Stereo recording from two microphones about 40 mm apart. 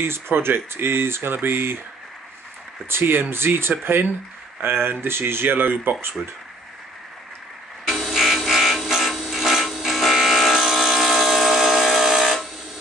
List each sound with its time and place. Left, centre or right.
0.0 s speech: right
2.9 s speech: right
4.8 s speech: right
7.8 s wood: centre